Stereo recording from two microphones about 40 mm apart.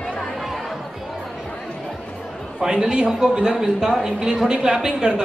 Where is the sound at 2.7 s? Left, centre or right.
Right.